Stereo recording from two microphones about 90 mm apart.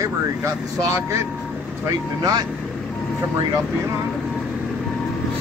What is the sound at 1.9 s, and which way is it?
Speech, 45° right (ahead or behind).